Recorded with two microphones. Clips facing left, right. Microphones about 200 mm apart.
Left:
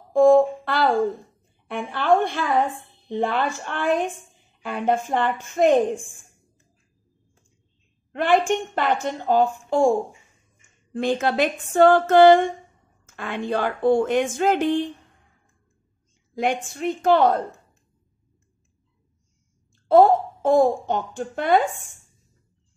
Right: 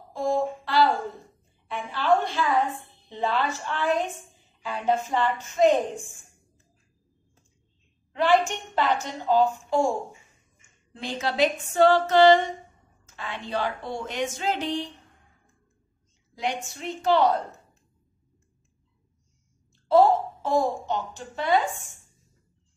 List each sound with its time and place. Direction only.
0.1 s a sound: 55° left (ahead or behind)
3.1 s a woman's voice: 55° left (ahead or behind)
8.1 s speech: 55° left (ahead or behind)
16.3 s speech: 55° left (ahead or behind)
19.9 s speech: 55° left (ahead or behind)